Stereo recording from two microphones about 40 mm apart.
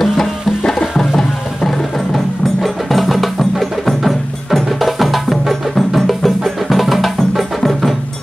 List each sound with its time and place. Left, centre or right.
0.0 s music: centre
0.6 s music: centre
0.9 s music: centre
2.1 s wood block: centre
5.9 s music: centre